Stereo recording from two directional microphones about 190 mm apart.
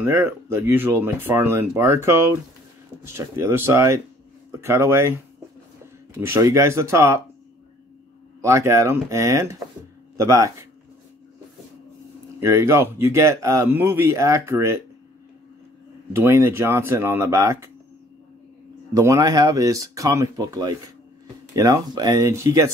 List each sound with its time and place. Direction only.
0.0 s speech: 10° right (ahead or behind)
6.1 s speech: 15° right (ahead or behind)
8.4 s speech: 15° right (ahead or behind)
12.4 s speech: 15° right (ahead or behind)
16.2 s speech: 15° right (ahead or behind)
18.9 s speech: 20° right (ahead or behind)